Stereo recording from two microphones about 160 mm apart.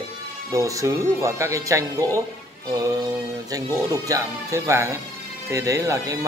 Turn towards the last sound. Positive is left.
turn(degrees=-20)  # may be behind; listen again after turning